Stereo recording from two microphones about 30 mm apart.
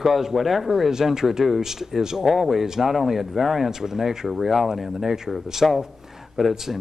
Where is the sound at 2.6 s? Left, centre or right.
Centre.